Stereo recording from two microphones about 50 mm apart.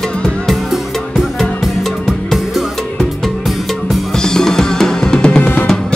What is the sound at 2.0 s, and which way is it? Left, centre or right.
Music, centre.